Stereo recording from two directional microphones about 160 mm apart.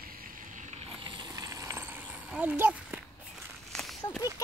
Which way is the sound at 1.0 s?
25° right (ahead or behind).